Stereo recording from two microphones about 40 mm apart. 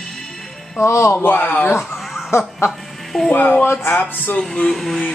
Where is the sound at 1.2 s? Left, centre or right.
Left.